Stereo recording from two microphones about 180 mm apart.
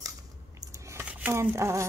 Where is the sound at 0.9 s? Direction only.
10° right (ahead or behind).